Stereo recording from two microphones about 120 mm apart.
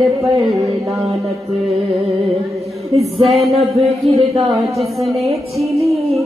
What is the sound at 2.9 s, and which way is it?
Singing, 60° right (ahead or behind).